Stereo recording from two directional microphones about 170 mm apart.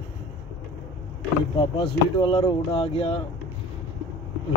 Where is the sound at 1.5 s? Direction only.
30° left (ahead or behind).